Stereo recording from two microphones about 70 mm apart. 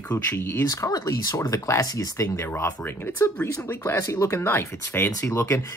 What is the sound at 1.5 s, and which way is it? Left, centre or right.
Speech, left.